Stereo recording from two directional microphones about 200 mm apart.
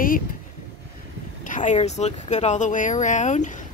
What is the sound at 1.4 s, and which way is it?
Speech, 40° left (ahead or behind).